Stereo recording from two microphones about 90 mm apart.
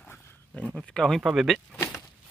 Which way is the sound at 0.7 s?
10° left (ahead or behind).